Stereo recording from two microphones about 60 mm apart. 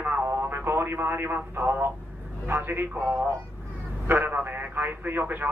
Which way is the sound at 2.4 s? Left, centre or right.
Right.